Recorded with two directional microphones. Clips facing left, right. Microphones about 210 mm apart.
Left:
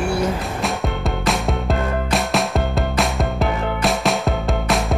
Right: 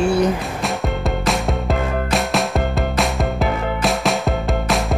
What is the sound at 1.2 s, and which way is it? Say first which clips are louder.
Music: right 1 dB; centre (ahead or behind).